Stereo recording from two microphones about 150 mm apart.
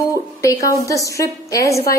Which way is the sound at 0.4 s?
20° left (ahead or behind).